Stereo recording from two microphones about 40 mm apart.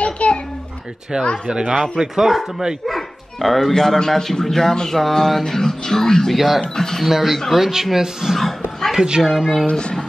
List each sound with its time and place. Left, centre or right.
0.0 s babbling: left
1.1 s speech: right
2.1 s speech: centre
2.9 s dog: centre
3.7 s speech: centre
6.3 s speech: centre
6.7 s speech: centre
7.1 s speech: centre
8.9 s a woman's voice: right
9.7 s speech: left